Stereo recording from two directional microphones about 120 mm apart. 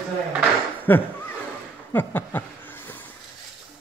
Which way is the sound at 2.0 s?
15° left (ahead or behind).